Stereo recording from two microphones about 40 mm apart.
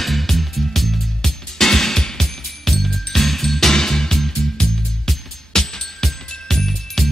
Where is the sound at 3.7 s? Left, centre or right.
Centre.